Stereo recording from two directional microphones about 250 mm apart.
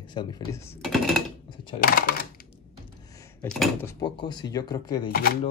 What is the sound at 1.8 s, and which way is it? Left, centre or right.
Speech, left.